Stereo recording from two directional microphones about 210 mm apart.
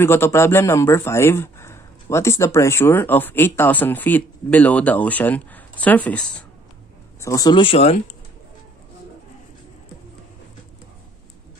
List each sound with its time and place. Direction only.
0.0 s speech: 10° left (ahead or behind); by 8.0 s 30° left (ahead or behind)